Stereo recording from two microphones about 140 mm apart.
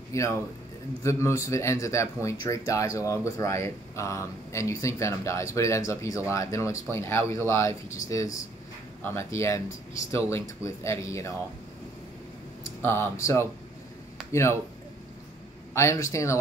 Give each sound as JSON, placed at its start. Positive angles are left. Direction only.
{"t": 0.1, "sound": "speech", "side_deg": 20}
{"t": 12.8, "sound": "speech", "side_deg": 20}
{"t": 15.7, "sound": "speech", "side_deg": 20}